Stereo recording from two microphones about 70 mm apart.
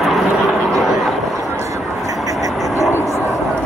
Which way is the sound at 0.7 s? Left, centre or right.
Centre.